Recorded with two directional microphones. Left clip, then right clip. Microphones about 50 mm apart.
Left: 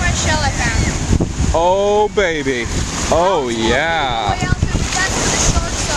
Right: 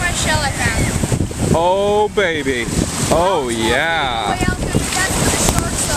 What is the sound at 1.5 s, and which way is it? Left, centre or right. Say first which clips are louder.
Speech: left 1 dB; left.